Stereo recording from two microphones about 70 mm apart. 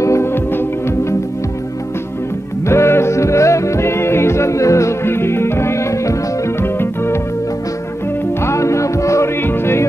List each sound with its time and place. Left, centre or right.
0.0 s music: left
2.7 s music: left
8.5 s music: left